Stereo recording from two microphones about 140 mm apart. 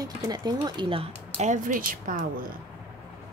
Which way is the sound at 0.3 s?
30° right (ahead or behind).